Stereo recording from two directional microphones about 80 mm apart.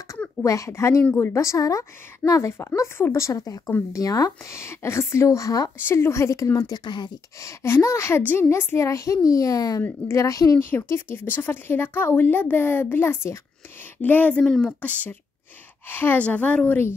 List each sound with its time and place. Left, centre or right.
0.4 s a woman's voice: left
4.6 s a woman's voice: left
5.8 s a woman's voice: left
6.7 s speech: left
7.4 s a woman's voice: left
8.2 s speech: left
8.5 s a woman's voice: left
9.8 s a woman's voice: left
10.6 s speech: left
14.4 s speech: centre
14.8 s speech: centre
16.2 s speech: centre